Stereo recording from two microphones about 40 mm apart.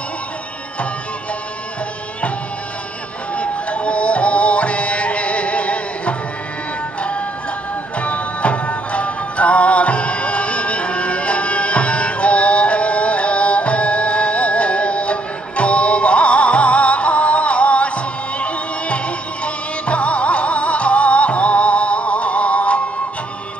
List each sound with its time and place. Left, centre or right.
3.3 s music: left